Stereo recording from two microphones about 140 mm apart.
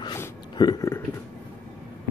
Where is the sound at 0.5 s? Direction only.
30° left (ahead or behind).